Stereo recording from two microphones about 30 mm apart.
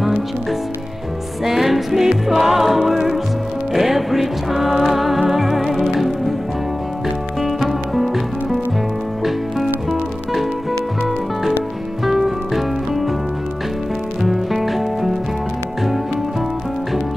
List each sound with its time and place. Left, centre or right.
0.0 s music: centre
7.9 s music: centre
12.0 s music: centre
14.2 s music: centre